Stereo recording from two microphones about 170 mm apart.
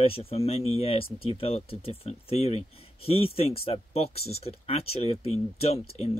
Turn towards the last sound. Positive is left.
turn(degrees=40)  # may be behind; listen again after turning